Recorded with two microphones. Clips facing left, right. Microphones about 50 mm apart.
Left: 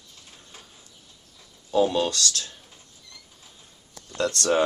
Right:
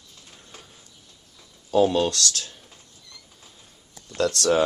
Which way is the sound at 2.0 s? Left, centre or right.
Centre.